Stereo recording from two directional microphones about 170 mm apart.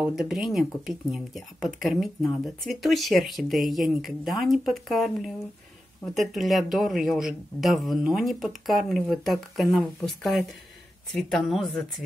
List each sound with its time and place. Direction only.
0.0 s speech: 5° right (ahead or behind)